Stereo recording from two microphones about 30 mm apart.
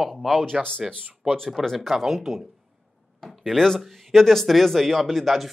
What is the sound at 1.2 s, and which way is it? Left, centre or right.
Speech, centre.